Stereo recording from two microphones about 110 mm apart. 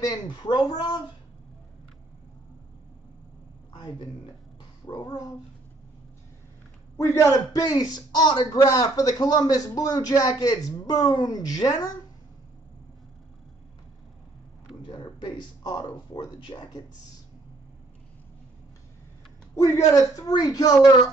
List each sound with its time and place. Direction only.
0.0 s speech: 40° left (ahead or behind)
3.7 s speech: 40° left (ahead or behind)
7.0 s a man's voice: 30° left (ahead or behind)
7.6 s speech: 40° left (ahead or behind)
14.9 s speech: 45° left (ahead or behind)
19.5 s speech: 30° left (ahead or behind)